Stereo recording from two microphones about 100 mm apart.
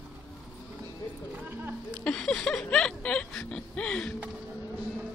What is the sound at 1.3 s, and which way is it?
Music, 20° right (ahead or behind).